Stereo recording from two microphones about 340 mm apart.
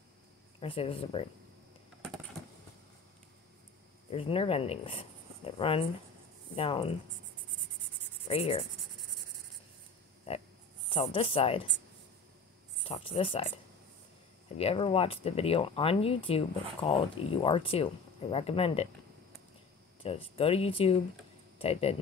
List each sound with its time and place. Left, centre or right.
0.6 s speech: centre
4.1 s speech: centre
8.3 s speech: centre
10.3 s a sound: centre
10.9 s speech: centre
12.8 s speech: centre
14.6 s speech: centre
20.0 s speech: centre